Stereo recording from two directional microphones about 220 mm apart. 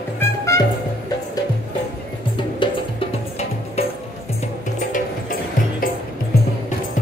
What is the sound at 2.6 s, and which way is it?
Music, 25° left (ahead or behind).